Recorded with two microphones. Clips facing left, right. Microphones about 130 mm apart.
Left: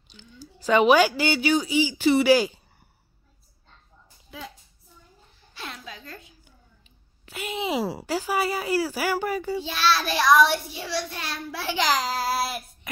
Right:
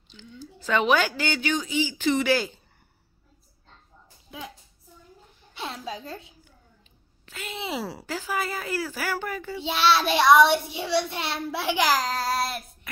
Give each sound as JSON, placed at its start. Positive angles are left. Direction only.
{"t": 0.1, "sound": "speech", "side_deg": 10}
{"t": 5.6, "sound": "a woman's voice", "side_deg": -30}
{"t": 7.2, "sound": "speech", "side_deg": 15}
{"t": 9.6, "sound": "child singing", "side_deg": -25}
{"t": 11.5, "sound": "a child's voice", "side_deg": -15}
{"t": 12.0, "sound": "speech", "side_deg": 10}